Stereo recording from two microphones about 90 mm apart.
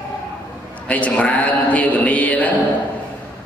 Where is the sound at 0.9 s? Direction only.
15° left (ahead or behind).